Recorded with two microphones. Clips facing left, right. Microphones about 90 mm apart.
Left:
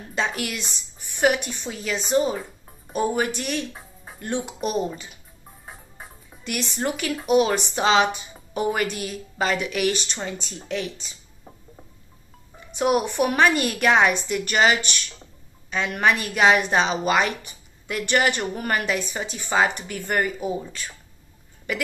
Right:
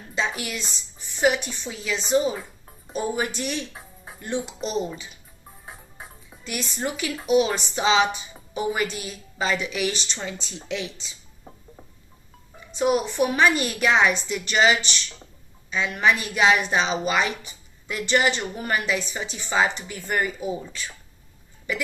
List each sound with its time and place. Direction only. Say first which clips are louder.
0.1 s a woman's voice: left 1 dB; 55° left (ahead or behind)
3.7 s music: even; centre (ahead or behind)
4.2 s speech: left 2 dB; 55° left (ahead or behind)
5.7 s music: even; centre (ahead or behind)
6.7 s a woman's voice: left 2 dB; 50° left (ahead or behind)
11.5 s music: right 1 dB; 5° left (ahead or behind)
12.7 s a woman's voice: left 1 dB; 55° left (ahead or behind)